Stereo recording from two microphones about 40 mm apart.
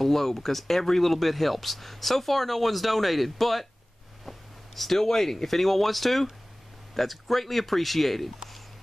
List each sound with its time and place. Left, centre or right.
0.0 s speech: centre